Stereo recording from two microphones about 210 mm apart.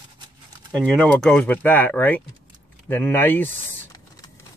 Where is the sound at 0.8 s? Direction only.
5° left (ahead or behind).